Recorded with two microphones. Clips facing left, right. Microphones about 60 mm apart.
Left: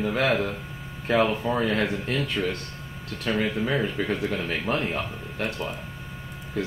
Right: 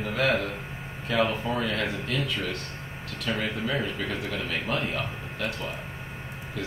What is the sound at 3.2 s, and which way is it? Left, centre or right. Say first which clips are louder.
Speech: left 4 dB; left.